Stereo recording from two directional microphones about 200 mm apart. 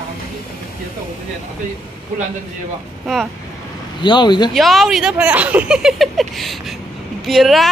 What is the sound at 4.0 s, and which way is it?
Speech, 20° left (ahead or behind).